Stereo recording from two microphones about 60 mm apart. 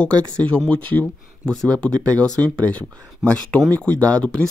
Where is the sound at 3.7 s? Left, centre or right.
Left.